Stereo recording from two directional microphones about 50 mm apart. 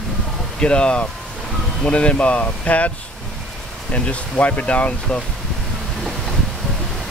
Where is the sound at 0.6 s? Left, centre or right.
Left.